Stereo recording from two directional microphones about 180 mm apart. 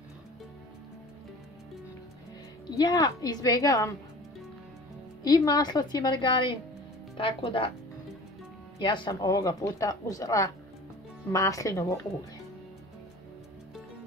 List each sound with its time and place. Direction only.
2.8 s speech: 20° left (ahead or behind)
5.2 s speech: 20° left (ahead or behind)
8.7 s speech: 25° left (ahead or behind)